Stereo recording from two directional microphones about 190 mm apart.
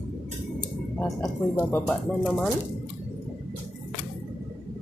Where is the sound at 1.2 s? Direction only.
10° left (ahead or behind).